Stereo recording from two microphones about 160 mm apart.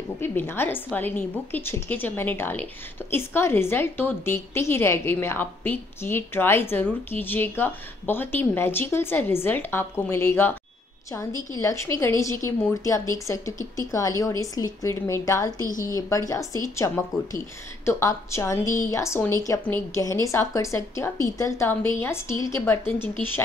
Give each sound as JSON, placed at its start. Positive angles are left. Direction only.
{"t": 0.2, "sound": "a woman's voice", "side_deg": 15}
{"t": 15.6, "sound": "a woman's voice", "side_deg": 55}
{"t": 15.9, "sound": "a woman's voice", "side_deg": 20}